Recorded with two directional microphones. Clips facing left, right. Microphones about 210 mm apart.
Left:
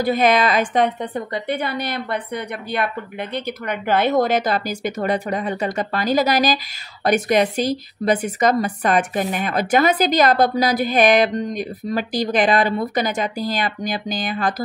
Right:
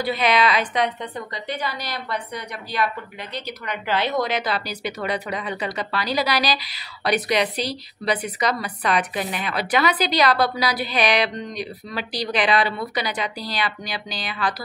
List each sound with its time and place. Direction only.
0.0 s a woman's voice: 45° left (ahead or behind)